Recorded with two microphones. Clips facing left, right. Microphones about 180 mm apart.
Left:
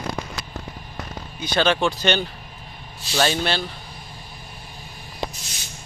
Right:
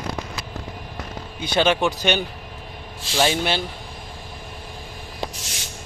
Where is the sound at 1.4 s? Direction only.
15° right (ahead or behind).